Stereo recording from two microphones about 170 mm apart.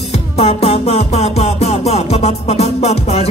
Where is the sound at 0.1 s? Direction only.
35° left (ahead or behind).